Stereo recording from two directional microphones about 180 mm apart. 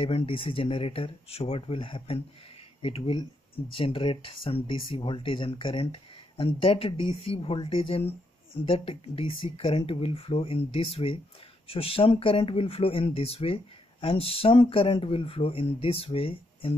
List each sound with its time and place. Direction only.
0.0 s speech: 30° left (ahead or behind)